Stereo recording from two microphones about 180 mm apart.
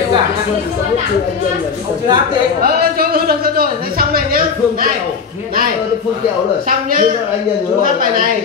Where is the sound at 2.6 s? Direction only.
55° right (ahead or behind).